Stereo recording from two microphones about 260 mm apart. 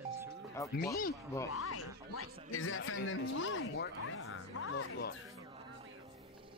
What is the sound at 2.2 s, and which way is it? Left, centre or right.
Speech, left.